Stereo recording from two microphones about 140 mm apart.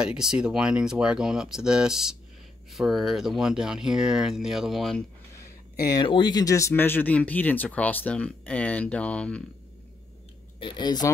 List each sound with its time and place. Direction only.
0.0 s speech: 5° right (ahead or behind)
5.4 s a sound: 25° left (ahead or behind)
6.0 s speech: 35° left (ahead or behind); by 9.4 s 10° left (ahead or behind)
10.6 s speech: 30° left (ahead or behind)